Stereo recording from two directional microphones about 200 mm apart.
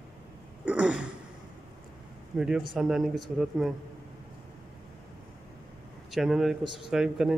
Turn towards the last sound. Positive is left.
turn(degrees=-5)  # may be behind; listen again after turning